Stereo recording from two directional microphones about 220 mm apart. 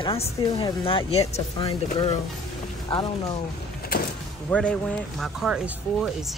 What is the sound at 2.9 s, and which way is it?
Speech, 25° left (ahead or behind).